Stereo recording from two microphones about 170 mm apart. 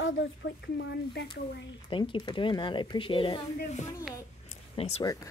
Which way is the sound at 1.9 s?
30° left (ahead or behind).